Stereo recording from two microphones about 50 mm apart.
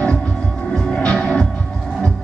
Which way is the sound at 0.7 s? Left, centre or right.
Centre.